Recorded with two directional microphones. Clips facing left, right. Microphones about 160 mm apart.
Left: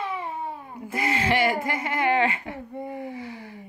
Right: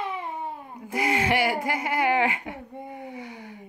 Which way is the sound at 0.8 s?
10° right (ahead or behind).